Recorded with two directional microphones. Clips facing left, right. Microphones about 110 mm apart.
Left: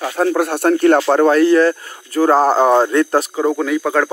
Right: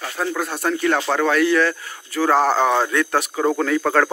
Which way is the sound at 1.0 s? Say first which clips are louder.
Left 6 dB; 40° left (ahead or behind).